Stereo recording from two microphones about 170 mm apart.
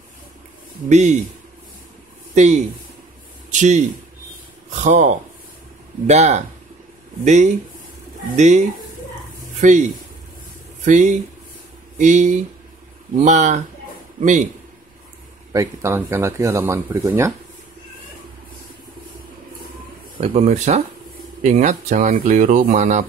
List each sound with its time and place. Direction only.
0.8 s speech: 45° right (ahead or behind)
2.3 s speech: 45° right (ahead or behind)
10.9 s speech: 50° right (ahead or behind)
15.5 s speech: 20° right (ahead or behind)
20.2 s speech: 40° right (ahead or behind)